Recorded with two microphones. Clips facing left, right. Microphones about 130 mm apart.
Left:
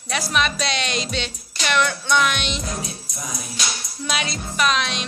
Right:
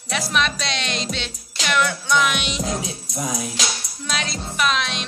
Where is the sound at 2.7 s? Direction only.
90° right.